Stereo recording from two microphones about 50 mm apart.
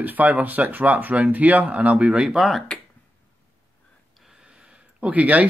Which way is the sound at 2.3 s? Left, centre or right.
Centre.